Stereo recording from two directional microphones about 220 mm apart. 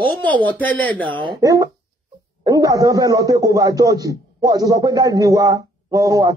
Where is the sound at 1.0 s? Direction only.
20° right (ahead or behind).